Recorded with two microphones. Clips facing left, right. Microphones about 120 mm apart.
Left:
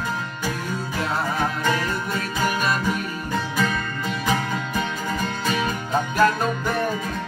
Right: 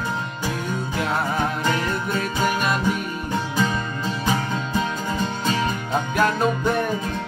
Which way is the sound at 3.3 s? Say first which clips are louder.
Right 1 dB; 20° right (ahead or behind).